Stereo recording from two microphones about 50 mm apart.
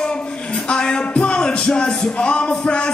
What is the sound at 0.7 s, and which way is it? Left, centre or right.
Music, centre.